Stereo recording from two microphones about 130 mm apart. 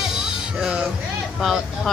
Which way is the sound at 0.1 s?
5° right (ahead or behind).